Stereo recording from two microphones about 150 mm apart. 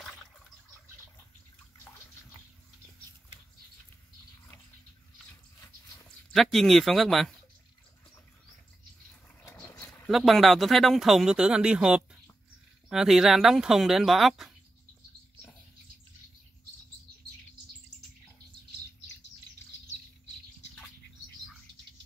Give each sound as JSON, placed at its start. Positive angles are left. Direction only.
{"t": 6.3, "sound": "speech", "side_deg": 0}
{"t": 9.4, "sound": "vehicle", "side_deg": 20}
{"t": 10.0, "sound": "speech", "side_deg": 0}